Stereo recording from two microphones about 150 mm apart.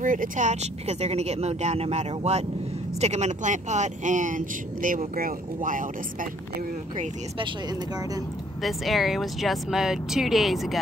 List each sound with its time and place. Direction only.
0.0 s speech: 65° right (ahead or behind)
4.8 s speech: 70° right (ahead or behind)
8.6 s speech: centre (ahead or behind)